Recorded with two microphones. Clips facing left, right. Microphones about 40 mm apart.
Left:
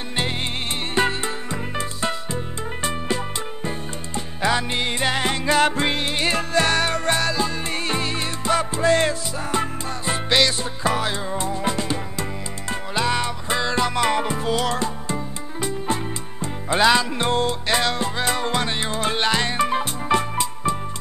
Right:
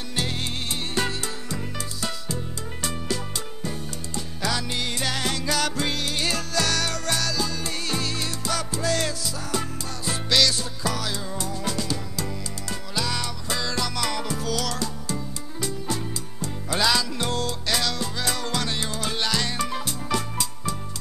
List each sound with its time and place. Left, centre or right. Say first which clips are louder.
0.9 s music: left 7 dB; left